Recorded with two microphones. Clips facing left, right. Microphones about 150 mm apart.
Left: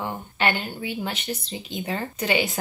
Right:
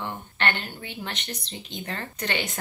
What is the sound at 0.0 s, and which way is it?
A woman's voice, 10° left (ahead or behind).